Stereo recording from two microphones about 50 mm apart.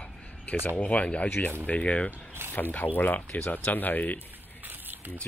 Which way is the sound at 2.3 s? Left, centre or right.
Right.